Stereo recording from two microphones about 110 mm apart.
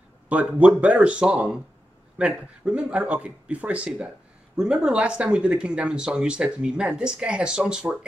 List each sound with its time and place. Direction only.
0.3 s speech: 10° right (ahead or behind)